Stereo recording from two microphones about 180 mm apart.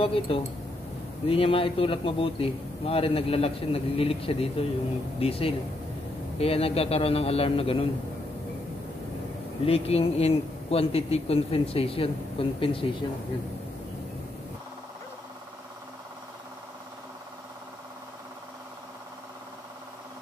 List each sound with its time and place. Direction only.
0.0 s a man's voice: 30° left (ahead or behind)
9.7 s a man's voice: 35° left (ahead or behind)